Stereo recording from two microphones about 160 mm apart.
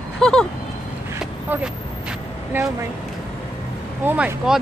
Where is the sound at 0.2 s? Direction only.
5° left (ahead or behind).